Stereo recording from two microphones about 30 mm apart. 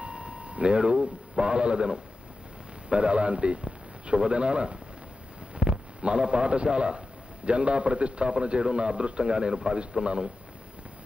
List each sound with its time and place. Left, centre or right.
0.0 s a man's voice: right